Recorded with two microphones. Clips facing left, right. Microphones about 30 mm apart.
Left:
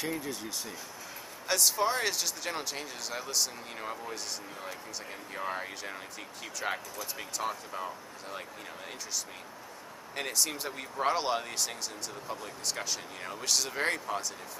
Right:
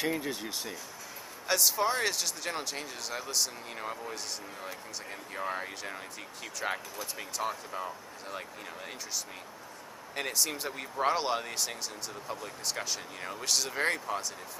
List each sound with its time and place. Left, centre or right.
0.0 s speech: right
1.5 s speech: centre
5.3 s speech: centre
10.1 s speech: centre